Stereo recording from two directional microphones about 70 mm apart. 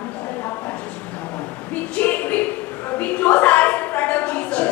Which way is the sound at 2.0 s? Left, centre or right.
Left.